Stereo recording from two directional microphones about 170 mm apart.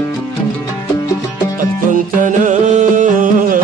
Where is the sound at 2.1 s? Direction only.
50° right (ahead or behind).